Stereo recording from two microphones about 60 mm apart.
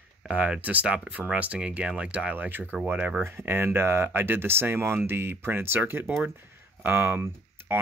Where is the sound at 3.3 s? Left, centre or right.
Right.